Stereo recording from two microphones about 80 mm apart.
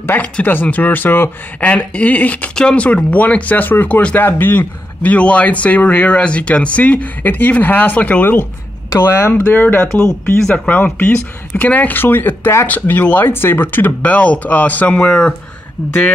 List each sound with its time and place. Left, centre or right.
0.0 s speech: left
9.0 s speech: left; by 15.3 s centre